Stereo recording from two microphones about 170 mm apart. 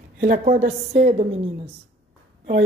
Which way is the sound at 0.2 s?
60° right (ahead or behind).